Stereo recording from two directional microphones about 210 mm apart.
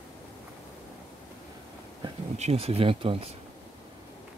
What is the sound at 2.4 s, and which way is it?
Speech, 30° right (ahead or behind).